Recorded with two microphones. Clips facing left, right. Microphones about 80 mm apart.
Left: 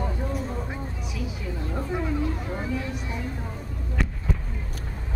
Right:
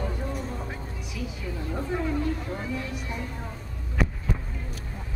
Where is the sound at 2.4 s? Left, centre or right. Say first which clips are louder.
Left 2 dB; centre.